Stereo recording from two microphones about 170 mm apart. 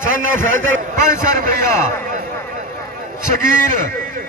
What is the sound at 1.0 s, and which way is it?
Speech, 50° right (ahead or behind).